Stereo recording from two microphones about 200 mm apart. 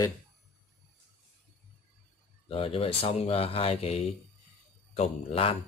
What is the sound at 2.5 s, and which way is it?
Speech, 25° left (ahead or behind).